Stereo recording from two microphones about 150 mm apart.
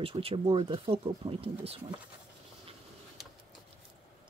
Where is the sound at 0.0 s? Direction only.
40° right (ahead or behind).